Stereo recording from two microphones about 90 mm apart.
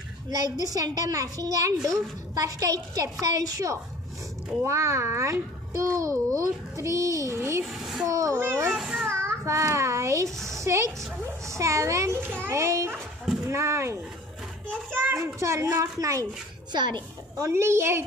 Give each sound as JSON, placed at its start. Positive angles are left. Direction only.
{"t": 0.4, "sound": "a woman's voice", "side_deg": -40}
{"t": 7.6, "sound": "a woman's voice", "side_deg": -5}
{"t": 8.1, "sound": "a woman's voice", "side_deg": -35}
{"t": 8.5, "sound": "a woman's voice", "side_deg": -25}
{"t": 8.7, "sound": "a child's voice", "side_deg": -5}
{"t": 9.0, "sound": "a child's voice", "side_deg": -30}
{"t": 10.3, "sound": "a woman's voice", "side_deg": 5}
{"t": 10.6, "sound": "a woman's voice", "side_deg": -35}
{"t": 13.2, "sound": "a sound", "side_deg": -5}
{"t": 13.5, "sound": "a woman's voice", "side_deg": -30}
{"t": 14.9, "sound": "a child's voice", "side_deg": -20}
{"t": 15.1, "sound": "a woman's voice", "side_deg": -35}
{"t": 16.7, "sound": "a woman's voice", "side_deg": -55}
{"t": 17.4, "sound": "a woman's voice", "side_deg": -30}